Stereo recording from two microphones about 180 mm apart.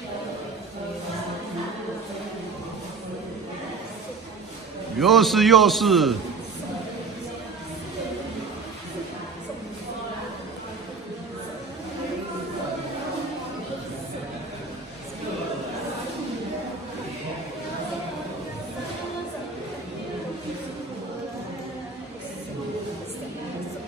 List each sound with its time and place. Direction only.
4.9 s a man's voice: centre (ahead or behind)